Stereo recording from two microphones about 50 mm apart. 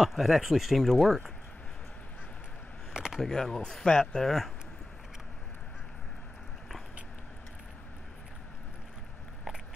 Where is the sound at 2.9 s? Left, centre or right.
Centre.